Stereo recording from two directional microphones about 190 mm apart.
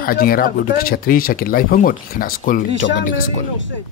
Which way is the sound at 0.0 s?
50° left (ahead or behind).